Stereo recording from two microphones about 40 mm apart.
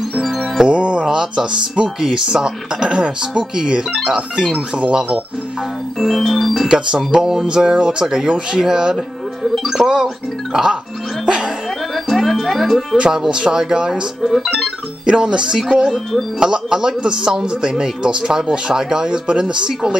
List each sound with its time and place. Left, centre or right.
0.2 s music: centre
0.6 s music: right
1.0 s a man's voice: centre
5.9 s organ: centre
7.1 s speech: centre
8.9 s music: centre
9.8 s speech: centre
11.2 s music: centre
11.9 s music: centre
12.9 s a man's voice: centre
14.2 s organ: centre
15.0 s a man's voice: right